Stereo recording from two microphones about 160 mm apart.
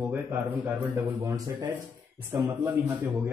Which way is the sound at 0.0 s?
10° right (ahead or behind).